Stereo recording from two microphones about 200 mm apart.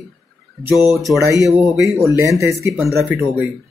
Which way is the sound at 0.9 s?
Centre (ahead or behind).